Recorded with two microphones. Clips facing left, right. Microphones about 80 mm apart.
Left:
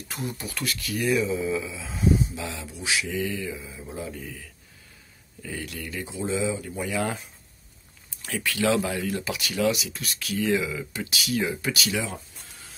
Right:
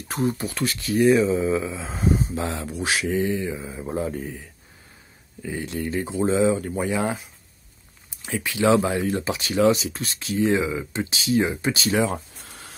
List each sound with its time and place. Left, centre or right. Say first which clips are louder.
0.1 s speech: right 9 dB; right
3.2 s speech: right 5 dB; right
3.6 s speech: right 8 dB; right
5.4 s speech: right 7 dB; right
6.9 s speech: even; right
12.0 s a sound: right 9 dB; right